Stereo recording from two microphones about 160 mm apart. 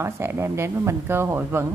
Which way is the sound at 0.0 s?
15° right (ahead or behind).